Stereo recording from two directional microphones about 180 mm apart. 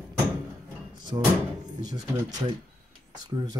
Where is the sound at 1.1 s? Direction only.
20° right (ahead or behind).